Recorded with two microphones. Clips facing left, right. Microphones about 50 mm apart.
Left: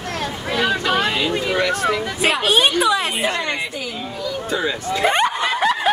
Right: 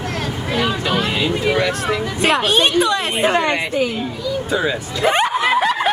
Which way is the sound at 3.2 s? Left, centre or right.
Right.